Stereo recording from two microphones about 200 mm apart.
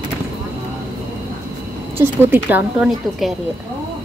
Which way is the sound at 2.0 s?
10° right (ahead or behind).